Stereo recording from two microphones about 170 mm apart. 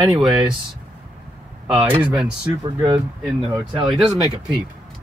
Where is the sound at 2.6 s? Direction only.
20° right (ahead or behind).